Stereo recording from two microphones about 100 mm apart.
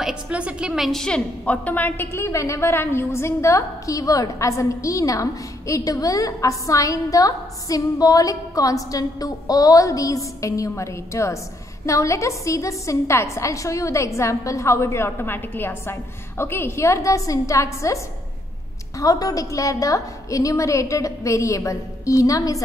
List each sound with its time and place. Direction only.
0.0 s a woman's voice: 10° right (ahead or behind); by 22.6 s 35° left (ahead or behind)